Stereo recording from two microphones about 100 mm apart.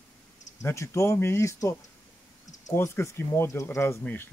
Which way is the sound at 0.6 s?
30° left (ahead or behind).